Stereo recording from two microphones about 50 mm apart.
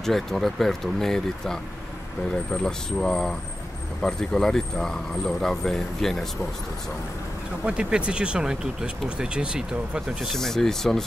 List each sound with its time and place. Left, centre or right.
0.0 s speech: centre
7.6 s speech: right
10.3 s speech: centre